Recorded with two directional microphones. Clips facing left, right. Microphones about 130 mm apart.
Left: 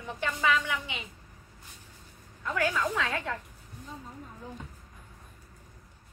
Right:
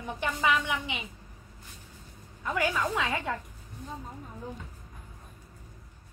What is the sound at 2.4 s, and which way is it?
Speech, 15° right (ahead or behind).